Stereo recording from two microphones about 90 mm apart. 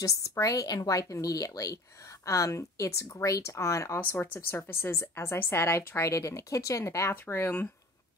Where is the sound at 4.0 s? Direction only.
20° left (ahead or behind).